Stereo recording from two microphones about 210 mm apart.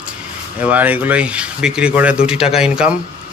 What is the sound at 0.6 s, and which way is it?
Speech, 5° right (ahead or behind).